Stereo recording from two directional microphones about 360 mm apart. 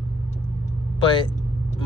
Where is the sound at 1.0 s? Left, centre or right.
Centre.